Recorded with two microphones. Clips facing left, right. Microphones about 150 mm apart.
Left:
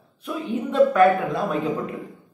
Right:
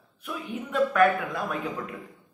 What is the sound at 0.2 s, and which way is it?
Speech, 30° left (ahead or behind).